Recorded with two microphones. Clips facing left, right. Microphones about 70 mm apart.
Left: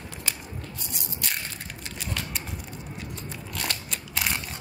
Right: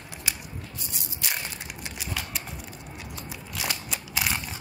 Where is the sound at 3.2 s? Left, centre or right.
Centre.